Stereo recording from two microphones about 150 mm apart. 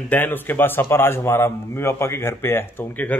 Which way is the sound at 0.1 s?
15° left (ahead or behind).